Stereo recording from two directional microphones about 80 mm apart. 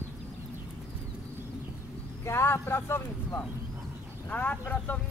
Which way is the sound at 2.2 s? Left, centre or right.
Left.